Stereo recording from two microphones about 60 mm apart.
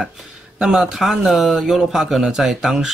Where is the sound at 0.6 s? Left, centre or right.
Centre.